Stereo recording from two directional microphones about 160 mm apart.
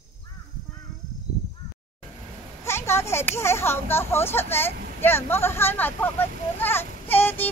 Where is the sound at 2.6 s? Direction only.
15° left (ahead or behind).